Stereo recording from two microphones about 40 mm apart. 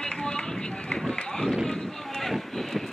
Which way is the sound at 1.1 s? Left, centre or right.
Centre.